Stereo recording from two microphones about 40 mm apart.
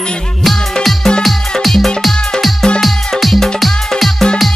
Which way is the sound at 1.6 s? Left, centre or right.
Centre.